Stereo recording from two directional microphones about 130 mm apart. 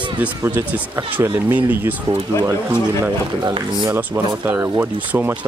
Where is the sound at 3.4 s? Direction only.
35° right (ahead or behind).